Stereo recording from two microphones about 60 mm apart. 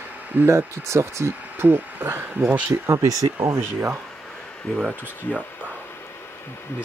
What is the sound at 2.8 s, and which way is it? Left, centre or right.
Speech, right.